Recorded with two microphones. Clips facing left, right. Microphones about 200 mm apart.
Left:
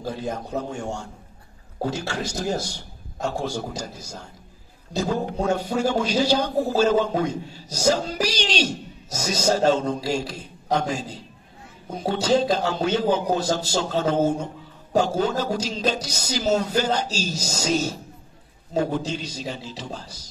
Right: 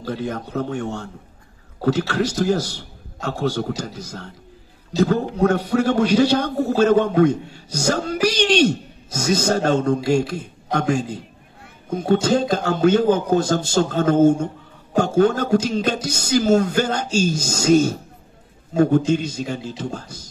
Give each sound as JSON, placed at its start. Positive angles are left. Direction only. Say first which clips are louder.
{"t": 0.0, "sound": "a man's voice", "louder": "right 3 dB", "side_deg": -60}